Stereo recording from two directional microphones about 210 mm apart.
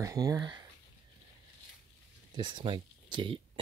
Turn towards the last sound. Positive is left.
turn(degrees=-25)  # may be behind; listen again after turning